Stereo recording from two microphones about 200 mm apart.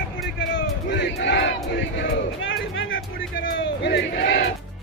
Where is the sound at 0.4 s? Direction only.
65° left (ahead or behind).